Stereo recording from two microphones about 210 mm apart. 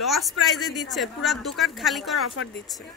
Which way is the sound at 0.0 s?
Centre (ahead or behind).